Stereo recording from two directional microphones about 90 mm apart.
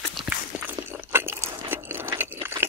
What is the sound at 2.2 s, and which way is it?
Crunch, 25° right (ahead or behind).